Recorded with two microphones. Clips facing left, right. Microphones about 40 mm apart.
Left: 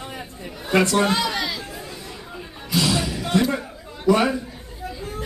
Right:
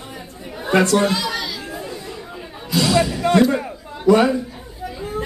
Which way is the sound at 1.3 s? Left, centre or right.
Centre.